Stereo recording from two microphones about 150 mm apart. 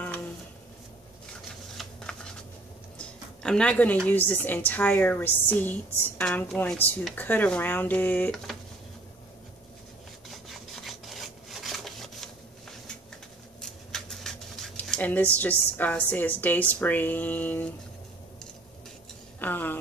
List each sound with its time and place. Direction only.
1.8 s shuffling cards: 5° left (ahead or behind)
3.0 s a woman's voice: 5° left (ahead or behind)
10.3 s rub: centre (ahead or behind)
13.6 s speech: 5° left (ahead or behind)
19.4 s a woman's voice: 10° left (ahead or behind)